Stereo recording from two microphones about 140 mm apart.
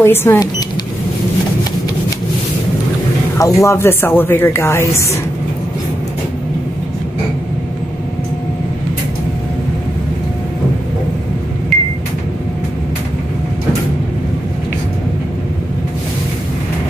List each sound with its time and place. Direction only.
0.0 s a woman's voice: 15° left (ahead or behind)
3.3 s a woman's voice: 20° left (ahead or behind)